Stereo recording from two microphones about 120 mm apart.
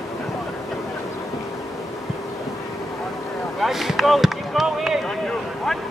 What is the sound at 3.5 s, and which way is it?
Basketball bounce, centre (ahead or behind).